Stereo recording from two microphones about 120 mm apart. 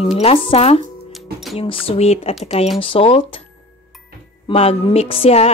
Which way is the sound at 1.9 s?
60° left (ahead or behind).